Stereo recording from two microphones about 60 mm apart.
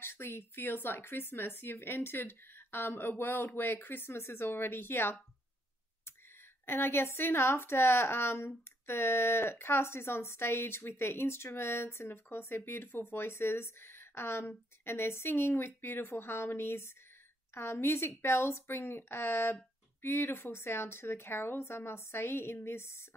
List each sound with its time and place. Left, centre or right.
0.0 s speech: left
6.6 s a woman's voice: left